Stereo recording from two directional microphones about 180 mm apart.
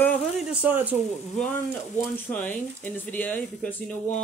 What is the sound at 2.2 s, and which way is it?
Speech, 10° left (ahead or behind).